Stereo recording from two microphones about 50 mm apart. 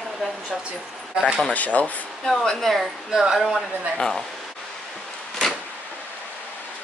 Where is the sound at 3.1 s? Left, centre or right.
Centre.